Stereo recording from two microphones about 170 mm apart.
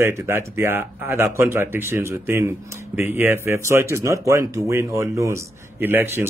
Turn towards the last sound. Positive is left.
turn(degrees=-10)  # may be behind; listen again after turning